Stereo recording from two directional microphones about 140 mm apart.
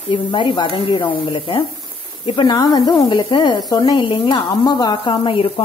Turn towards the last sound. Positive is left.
turn(degrees=40)  # may be behind; listen again after turning